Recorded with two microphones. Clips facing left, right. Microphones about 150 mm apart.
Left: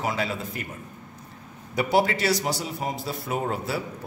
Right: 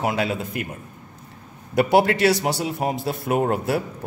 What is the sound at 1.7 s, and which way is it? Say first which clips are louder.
A man's voice: right 5 dB; 60° right (ahead or behind).